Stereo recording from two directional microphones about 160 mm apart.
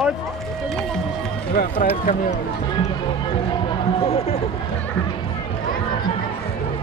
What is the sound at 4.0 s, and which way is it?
Speech, 40° left (ahead or behind).